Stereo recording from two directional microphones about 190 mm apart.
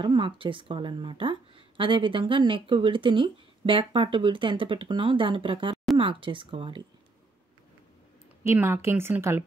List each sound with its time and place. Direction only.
0.0 s speech: 25° right (ahead or behind)
8.5 s speech: 15° right (ahead or behind)